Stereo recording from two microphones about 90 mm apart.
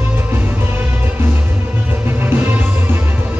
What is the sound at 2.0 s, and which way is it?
Music, 25° right (ahead or behind).